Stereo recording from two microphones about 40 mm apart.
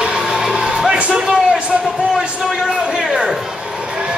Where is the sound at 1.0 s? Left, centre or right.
Right.